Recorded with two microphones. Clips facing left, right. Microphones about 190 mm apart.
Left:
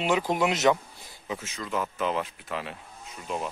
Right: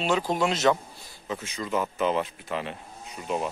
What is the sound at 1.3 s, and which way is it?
Speech, centre (ahead or behind).